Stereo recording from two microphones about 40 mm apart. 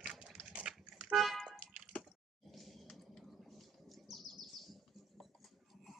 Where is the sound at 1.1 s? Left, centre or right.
Centre.